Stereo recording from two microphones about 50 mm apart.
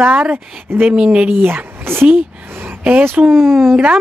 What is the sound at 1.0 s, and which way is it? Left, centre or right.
Speech, right.